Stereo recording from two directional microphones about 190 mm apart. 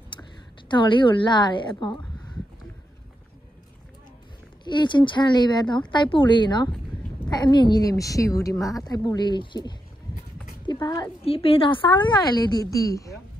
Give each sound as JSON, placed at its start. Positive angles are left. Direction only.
{"t": 0.7, "sound": "a woman's voice", "side_deg": 25}
{"t": 4.6, "sound": "a woman's voice", "side_deg": 25}